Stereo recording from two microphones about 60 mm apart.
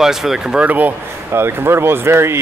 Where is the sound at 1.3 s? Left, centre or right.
Right.